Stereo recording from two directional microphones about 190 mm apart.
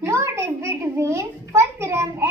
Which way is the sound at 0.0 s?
15° right (ahead or behind).